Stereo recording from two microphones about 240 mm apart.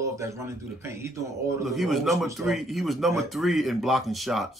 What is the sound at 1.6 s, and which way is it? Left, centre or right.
Speech, centre.